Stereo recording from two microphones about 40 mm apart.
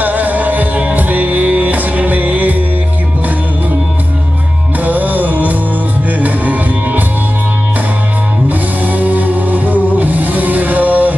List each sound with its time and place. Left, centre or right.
0.0 s music: right
4.8 s music: right
8.5 s music: right